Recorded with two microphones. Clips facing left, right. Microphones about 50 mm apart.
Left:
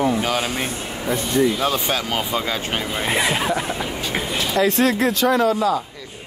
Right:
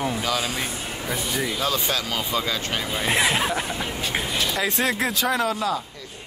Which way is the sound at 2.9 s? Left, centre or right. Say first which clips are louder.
Even; centre.